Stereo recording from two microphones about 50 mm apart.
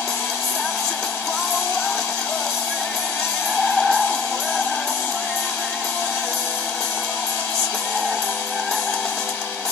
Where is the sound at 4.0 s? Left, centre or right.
Left.